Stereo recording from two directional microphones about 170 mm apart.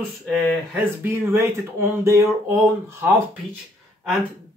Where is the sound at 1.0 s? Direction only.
15° right (ahead or behind).